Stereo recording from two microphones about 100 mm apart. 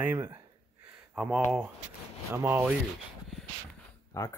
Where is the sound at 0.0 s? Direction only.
20° right (ahead or behind).